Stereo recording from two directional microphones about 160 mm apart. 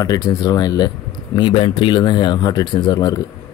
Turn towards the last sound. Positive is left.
turn(degrees=25)  # may be behind; listen again after turning